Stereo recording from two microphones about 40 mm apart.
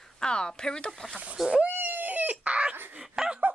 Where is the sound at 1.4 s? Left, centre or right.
Centre.